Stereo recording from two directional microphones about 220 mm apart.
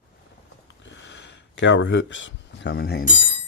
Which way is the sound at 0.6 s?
55° left (ahead or behind).